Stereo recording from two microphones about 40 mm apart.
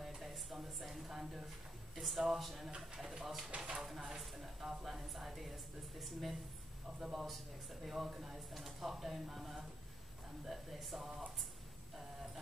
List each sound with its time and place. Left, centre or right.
0.0 s a sound: centre
2.0 s a woman's voice: centre
3.5 s speech: right
3.8 s a woman's voice: centre
7.0 s a woman's voice: centre